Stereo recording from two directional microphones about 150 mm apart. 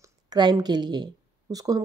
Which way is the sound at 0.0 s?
25° right (ahead or behind).